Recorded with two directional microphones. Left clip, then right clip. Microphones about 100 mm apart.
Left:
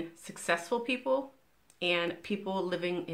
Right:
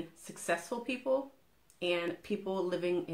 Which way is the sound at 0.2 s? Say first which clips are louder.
Left 3 dB; 15° left (ahead or behind).